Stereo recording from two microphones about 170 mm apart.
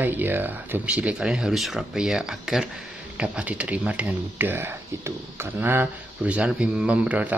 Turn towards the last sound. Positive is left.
turn(degrees=-10)  # may be behind; listen again after turning